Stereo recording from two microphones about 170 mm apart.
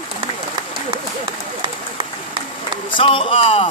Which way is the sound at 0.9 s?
30° right (ahead or behind).